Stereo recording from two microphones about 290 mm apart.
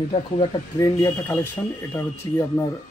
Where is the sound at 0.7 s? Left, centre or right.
Centre.